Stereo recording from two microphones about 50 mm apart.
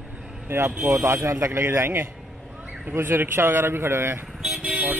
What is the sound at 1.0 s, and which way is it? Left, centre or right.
Speech, right.